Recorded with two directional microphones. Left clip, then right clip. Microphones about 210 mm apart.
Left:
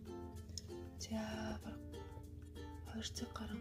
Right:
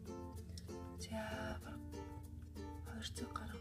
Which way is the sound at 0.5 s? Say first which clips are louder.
Left 2 dB; 15° left (ahead or behind).